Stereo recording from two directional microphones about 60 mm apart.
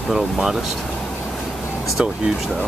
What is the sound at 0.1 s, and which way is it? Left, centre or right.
Speech, centre.